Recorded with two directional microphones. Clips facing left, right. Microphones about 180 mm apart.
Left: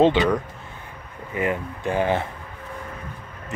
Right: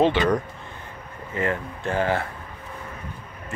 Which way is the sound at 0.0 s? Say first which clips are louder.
Left 3 dB; 20° left (ahead or behind).